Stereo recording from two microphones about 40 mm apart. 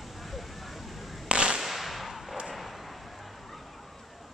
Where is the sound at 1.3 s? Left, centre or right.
Right.